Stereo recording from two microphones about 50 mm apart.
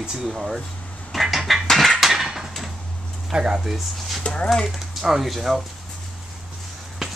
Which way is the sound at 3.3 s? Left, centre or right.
Centre.